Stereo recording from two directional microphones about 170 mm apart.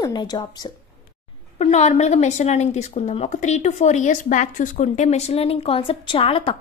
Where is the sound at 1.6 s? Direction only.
40° left (ahead or behind).